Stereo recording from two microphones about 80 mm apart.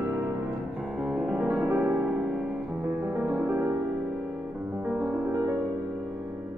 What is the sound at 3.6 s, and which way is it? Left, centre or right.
Music, right.